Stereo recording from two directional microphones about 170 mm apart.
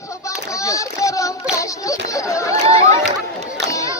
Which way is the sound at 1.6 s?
20° left (ahead or behind).